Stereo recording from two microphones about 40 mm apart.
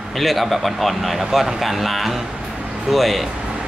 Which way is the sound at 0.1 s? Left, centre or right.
Centre.